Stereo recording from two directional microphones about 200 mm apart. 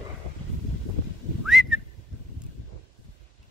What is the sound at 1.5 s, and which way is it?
Whistling, centre (ahead or behind).